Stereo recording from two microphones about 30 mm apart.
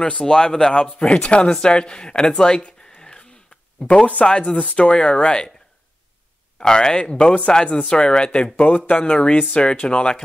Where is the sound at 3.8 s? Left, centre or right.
Left.